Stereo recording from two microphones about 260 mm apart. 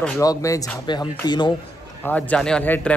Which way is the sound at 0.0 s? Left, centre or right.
Centre.